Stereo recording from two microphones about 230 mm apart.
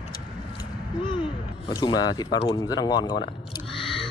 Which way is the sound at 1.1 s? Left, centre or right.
Left.